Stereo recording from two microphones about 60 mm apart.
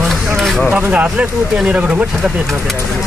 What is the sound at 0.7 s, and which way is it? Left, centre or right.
Speech, right.